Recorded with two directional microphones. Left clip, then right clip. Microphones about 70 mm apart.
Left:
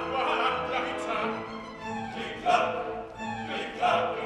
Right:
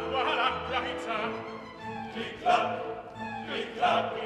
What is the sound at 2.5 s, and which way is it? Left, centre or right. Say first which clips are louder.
Music: left 1 dB; left.